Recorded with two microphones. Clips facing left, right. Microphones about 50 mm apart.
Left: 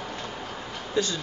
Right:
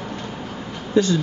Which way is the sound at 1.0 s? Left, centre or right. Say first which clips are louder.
Right 8 dB; right.